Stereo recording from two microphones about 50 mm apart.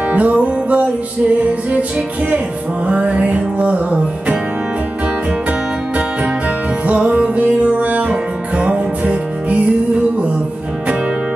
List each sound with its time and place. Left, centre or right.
0.1 s music: right
2.9 s music: right
6.9 s music: right